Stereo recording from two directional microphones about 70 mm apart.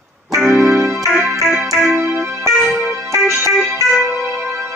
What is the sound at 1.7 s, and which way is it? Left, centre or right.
Keyboard, right.